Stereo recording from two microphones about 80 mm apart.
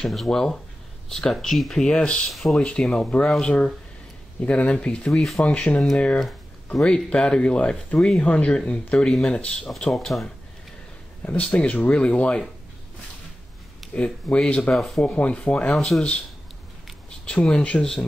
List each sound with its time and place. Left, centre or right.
0.0 s speech: centre
6.1 s a sound: centre
6.8 s speech: centre
11.2 s speech: centre
13.9 s speech: centre
14.8 s speech: centre
15.0 s speech: centre
17.3 s speech: centre